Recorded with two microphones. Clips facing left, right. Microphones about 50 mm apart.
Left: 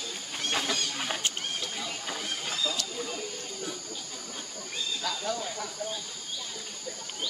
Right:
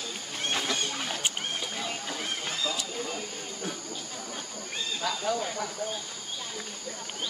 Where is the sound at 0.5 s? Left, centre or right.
Centre.